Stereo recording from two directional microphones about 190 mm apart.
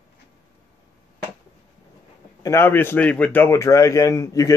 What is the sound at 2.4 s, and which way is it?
A man's voice, 15° left (ahead or behind).